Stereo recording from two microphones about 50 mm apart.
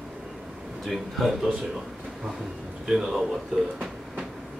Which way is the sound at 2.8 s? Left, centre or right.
Centre.